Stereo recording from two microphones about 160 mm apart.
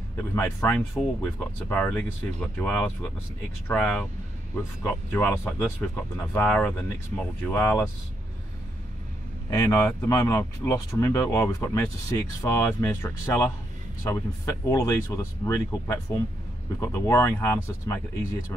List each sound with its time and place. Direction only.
0.2 s speech: 15° left (ahead or behind)
9.5 s speech: 15° left (ahead or behind)